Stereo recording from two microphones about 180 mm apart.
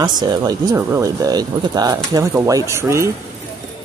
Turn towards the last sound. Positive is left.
turn(degrees=-15)  # may be behind; listen again after turning